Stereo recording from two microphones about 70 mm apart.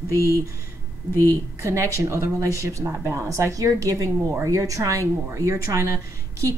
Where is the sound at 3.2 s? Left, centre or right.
Right.